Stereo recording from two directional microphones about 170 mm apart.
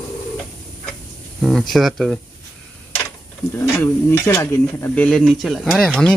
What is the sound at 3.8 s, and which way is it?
Speech, 15° left (ahead or behind).